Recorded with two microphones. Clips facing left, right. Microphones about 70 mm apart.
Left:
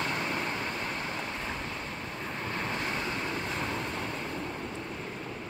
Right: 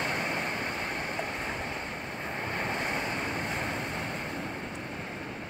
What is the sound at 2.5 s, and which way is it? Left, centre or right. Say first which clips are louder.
Waves: right 1 dB; right.